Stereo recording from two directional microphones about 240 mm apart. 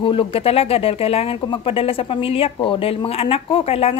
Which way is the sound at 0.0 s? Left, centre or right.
Left.